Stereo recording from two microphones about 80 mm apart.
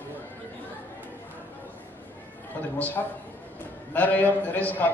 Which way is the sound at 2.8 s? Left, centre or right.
Left.